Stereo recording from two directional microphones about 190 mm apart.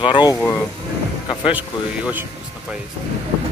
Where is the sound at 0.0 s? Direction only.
20° left (ahead or behind).